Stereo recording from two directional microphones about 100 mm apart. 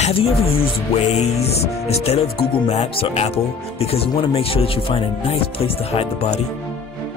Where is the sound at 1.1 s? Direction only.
90° left.